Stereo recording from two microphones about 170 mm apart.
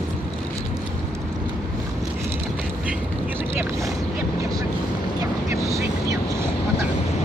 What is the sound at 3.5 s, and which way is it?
Boat, 15° right (ahead or behind).